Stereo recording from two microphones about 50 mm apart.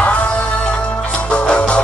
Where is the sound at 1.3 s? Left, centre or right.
Left.